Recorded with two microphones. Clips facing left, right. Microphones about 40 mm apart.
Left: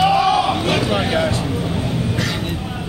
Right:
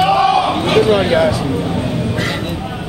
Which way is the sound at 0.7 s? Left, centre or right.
Right.